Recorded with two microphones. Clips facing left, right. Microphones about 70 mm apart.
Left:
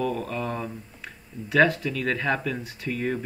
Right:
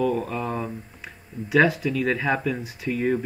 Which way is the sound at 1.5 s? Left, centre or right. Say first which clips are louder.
Right 1 dB; centre.